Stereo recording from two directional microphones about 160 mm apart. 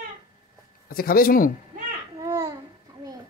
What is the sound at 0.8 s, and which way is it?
Speech, 65° left (ahead or behind).